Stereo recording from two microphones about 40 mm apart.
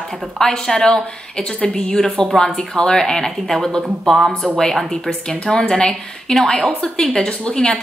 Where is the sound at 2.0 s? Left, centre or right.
Centre.